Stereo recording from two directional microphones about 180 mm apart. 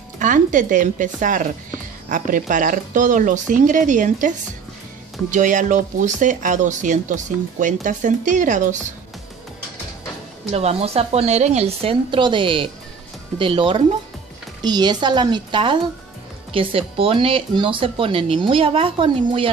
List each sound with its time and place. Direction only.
0.2 s speech: 45° right (ahead or behind)
5.3 s speech: 45° right (ahead or behind)
10.5 s a woman's voice: 35° right (ahead or behind)